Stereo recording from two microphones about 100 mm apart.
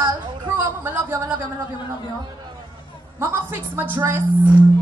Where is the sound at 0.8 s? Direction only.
25° right (ahead or behind).